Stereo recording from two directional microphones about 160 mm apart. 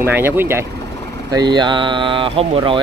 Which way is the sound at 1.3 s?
25° right (ahead or behind).